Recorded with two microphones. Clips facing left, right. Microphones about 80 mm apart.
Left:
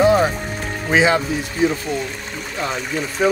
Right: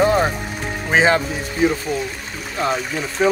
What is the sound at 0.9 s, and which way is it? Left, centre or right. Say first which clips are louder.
Speech: even; right.